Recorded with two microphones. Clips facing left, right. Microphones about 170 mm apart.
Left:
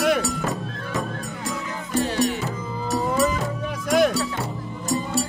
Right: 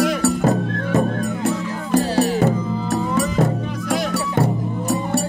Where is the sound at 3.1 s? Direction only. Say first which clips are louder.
Right 3 dB; 55° right (ahead or behind).